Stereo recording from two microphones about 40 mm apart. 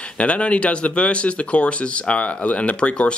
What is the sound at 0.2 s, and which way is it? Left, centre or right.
Speech, left.